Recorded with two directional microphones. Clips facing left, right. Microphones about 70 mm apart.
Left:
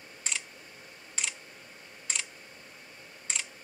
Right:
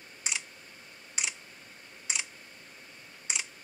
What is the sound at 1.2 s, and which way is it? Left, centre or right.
Computer keyboard, centre.